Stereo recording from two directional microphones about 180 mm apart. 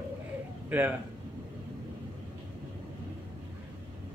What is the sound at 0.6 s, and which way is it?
Speech, 10° right (ahead or behind).